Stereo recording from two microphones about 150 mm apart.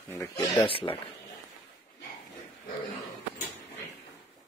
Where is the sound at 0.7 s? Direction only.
35° left (ahead or behind).